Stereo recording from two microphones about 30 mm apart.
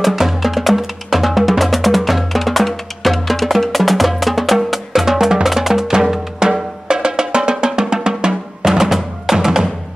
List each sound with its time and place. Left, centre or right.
0.0 s music: centre
5.3 s drum: centre
6.4 s music: right
6.9 s drum: right